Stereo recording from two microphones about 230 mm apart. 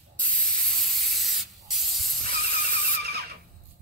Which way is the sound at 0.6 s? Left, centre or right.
Centre.